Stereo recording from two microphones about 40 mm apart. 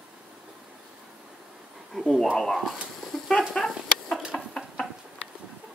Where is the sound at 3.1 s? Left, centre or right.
Centre.